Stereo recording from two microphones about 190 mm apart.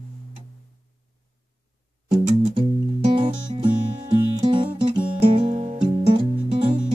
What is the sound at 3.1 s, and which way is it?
Music, 25° right (ahead or behind).